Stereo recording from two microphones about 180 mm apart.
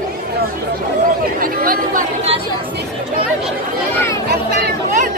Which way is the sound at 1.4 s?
50° right (ahead or behind).